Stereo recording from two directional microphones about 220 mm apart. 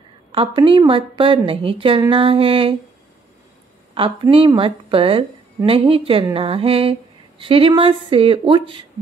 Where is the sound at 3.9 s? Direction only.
25° right (ahead or behind).